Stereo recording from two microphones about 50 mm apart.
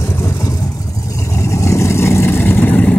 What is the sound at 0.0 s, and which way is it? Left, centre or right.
Vehicle, left.